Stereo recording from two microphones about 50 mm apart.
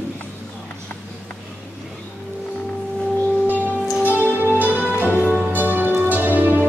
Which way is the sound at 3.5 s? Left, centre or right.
Right.